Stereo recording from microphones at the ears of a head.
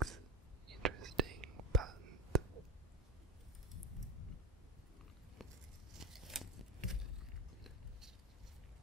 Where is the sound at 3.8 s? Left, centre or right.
Left.